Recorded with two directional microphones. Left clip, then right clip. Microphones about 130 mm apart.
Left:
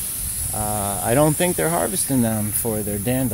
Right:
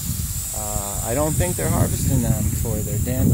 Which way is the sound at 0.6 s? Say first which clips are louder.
Left 5 dB; 60° left (ahead or behind).